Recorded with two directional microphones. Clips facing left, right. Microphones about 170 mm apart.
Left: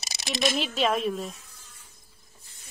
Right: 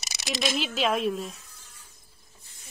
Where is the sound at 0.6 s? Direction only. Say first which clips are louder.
Even; centre (ahead or behind).